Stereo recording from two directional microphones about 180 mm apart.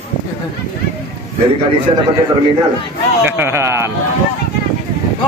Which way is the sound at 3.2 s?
15° right (ahead or behind).